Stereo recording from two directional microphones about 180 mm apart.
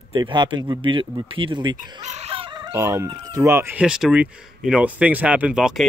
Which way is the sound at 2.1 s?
30° right (ahead or behind).